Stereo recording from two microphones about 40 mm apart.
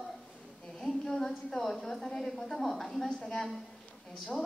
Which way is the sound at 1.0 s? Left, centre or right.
Centre.